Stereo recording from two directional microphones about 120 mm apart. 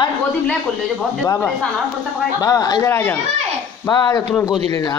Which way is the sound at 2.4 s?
35° left (ahead or behind).